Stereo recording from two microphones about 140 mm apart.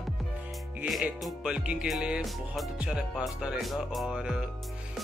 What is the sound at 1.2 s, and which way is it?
Music, 5° right (ahead or behind).